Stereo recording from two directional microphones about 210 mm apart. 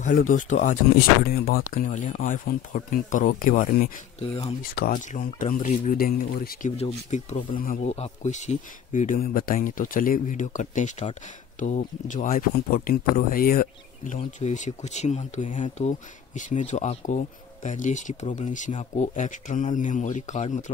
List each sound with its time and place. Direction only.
0.0 s speech: 40° left (ahead or behind)
6.8 s speech: 30° left (ahead or behind)